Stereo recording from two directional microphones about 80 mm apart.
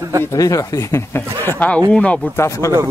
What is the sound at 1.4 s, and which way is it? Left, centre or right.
Speech, centre.